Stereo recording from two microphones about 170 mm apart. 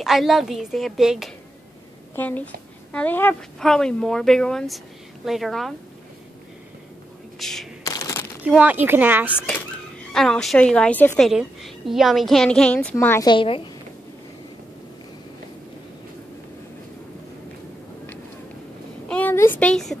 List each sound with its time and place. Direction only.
0.0 s a woman's voice: centre (ahead or behind)
2.1 s a woman's voice: 10° left (ahead or behind)
7.3 s speech: centre (ahead or behind)
7.8 s a sound: 20° left (ahead or behind)
8.5 s speech: 10° right (ahead or behind)
10.1 s a woman's voice: 5° left (ahead or behind)
11.2 s a woman's voice: centre (ahead or behind); by 13.3 s 15° left (ahead or behind)
13.3 s a woman's voice: 30° left (ahead or behind)
19.0 s a sound: 10° left (ahead or behind)